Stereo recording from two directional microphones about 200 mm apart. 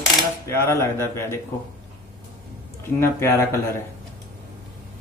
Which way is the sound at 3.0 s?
15° left (ahead or behind).